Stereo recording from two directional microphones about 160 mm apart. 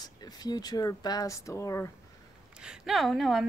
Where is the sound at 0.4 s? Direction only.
25° left (ahead or behind).